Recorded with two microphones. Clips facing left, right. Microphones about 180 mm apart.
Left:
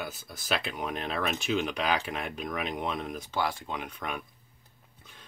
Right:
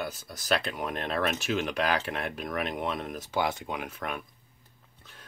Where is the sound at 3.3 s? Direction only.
20° right (ahead or behind).